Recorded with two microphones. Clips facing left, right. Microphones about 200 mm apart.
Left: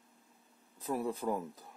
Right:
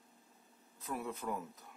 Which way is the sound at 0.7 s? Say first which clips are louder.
Left 6 dB; 35° left (ahead or behind).